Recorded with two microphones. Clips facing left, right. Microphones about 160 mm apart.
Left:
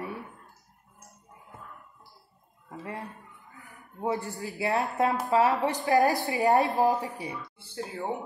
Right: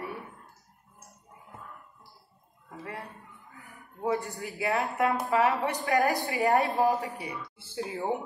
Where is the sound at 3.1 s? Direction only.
Centre (ahead or behind).